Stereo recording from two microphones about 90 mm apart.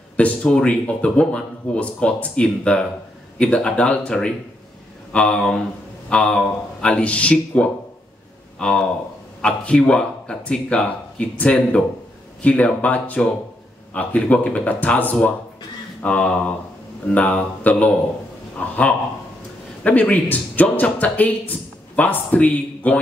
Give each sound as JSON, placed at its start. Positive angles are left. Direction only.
{"t": 0.2, "sound": "a man's voice", "side_deg": 10}